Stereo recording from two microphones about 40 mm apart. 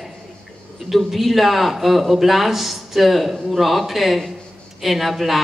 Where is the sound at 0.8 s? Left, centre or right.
Centre.